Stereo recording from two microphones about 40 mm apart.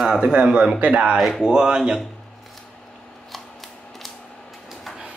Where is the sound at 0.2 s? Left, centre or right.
Right.